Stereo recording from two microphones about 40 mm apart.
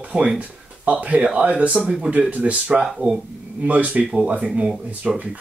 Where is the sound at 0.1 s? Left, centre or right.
Centre.